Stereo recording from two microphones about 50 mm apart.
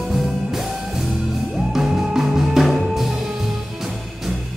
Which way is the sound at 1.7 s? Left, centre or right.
Centre.